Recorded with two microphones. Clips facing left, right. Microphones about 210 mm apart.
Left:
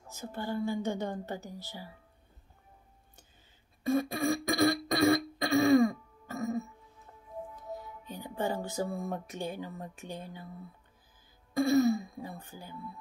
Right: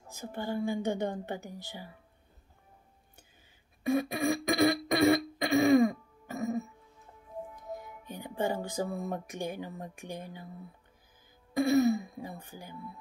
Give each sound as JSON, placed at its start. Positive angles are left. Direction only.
{"t": 0.1, "sound": "a woman's voice", "side_deg": -15}
{"t": 3.9, "sound": "a sound", "side_deg": -15}
{"t": 7.5, "sound": "speech", "side_deg": -15}
{"t": 11.5, "sound": "throat clearing", "side_deg": -20}